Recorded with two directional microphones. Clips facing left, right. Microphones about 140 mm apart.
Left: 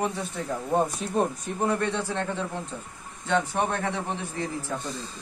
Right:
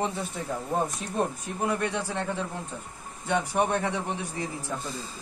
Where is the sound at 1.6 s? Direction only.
10° right (ahead or behind).